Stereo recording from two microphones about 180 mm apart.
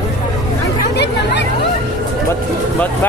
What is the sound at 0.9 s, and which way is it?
Speech, 70° left (ahead or behind).